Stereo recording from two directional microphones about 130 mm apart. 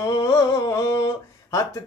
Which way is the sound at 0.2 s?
25° left (ahead or behind).